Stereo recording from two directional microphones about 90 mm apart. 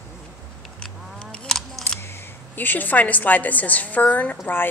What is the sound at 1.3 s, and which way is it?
Camera, 5° left (ahead or behind).